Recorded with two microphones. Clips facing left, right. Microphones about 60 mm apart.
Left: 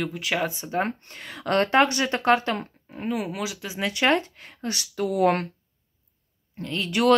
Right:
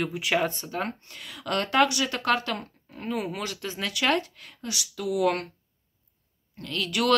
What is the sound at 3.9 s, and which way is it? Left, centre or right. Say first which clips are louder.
Speech: left 3 dB; left.